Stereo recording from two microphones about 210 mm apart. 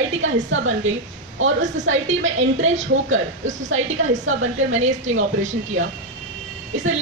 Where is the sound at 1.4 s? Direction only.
65° right (ahead or behind).